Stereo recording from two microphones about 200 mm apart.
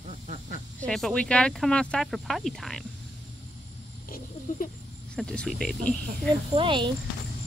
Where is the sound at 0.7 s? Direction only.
5° left (ahead or behind).